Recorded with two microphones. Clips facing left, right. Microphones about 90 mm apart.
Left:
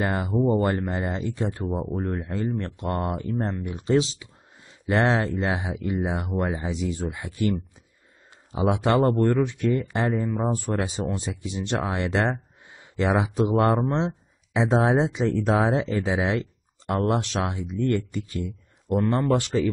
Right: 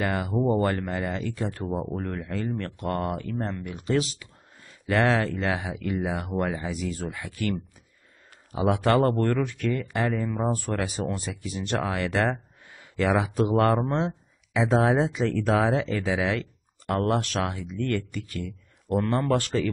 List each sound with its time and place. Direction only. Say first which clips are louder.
0.0 s speech: left 2 dB; 25° left (ahead or behind)
1.7 s speech: left 1 dB; centre (ahead or behind)
2.0 s speech: left 3 dB; 20° left (ahead or behind)
18.9 s speech: left 2 dB; 10° left (ahead or behind)